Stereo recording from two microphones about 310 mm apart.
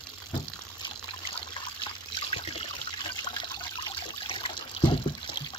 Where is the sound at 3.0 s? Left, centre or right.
Centre.